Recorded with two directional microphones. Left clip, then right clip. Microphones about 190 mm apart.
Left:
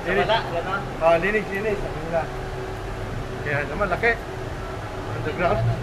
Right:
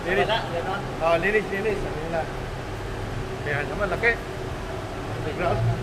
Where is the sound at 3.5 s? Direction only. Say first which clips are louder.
Left 2 dB; 5° left (ahead or behind).